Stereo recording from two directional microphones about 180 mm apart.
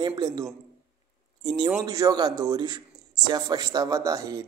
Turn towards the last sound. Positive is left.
turn(degrees=-20)  # may be behind; listen again after turning